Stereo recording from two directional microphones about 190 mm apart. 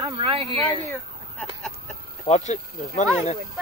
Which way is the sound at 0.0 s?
30° right (ahead or behind).